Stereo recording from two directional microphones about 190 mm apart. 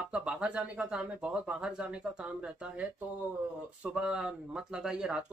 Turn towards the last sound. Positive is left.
turn(degrees=-5)  # may be behind; listen again after turning